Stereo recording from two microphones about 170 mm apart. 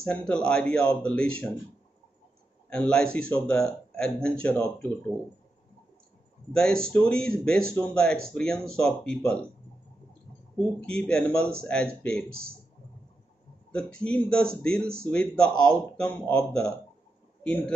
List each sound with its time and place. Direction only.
0.0 s speech: 5° left (ahead or behind)
2.7 s speech: 5° left (ahead or behind)
6.5 s speech: 5° left (ahead or behind)
10.8 s speech: 5° left (ahead or behind)
12.3 s speech: 60° right (ahead or behind)
13.9 s speech: 5° left (ahead or behind)